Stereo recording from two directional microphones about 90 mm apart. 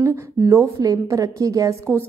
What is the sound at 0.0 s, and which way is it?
A woman's voice, 30° right (ahead or behind).